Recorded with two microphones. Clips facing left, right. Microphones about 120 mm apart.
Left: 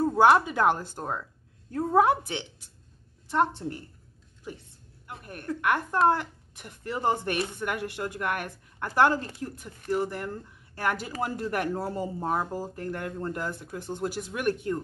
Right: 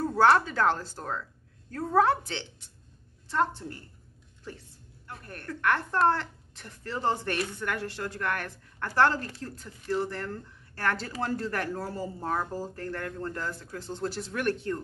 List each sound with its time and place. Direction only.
0.0 s a woman's voice: 15° left (ahead or behind)